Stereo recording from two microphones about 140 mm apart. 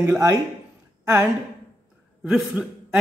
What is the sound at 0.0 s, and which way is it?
Speech, 15° right (ahead or behind).